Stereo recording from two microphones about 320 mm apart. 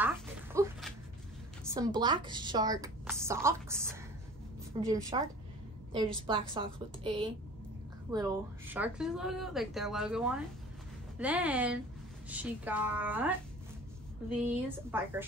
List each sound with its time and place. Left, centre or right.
0.0 s a sound: centre
1.7 s a woman's voice: centre
6.2 s a woman's voice: centre
14.3 s a woman's voice: centre